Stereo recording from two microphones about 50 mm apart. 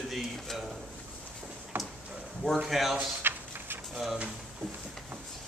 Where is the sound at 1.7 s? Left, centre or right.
Right.